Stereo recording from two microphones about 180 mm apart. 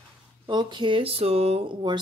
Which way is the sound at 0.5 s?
25° right (ahead or behind).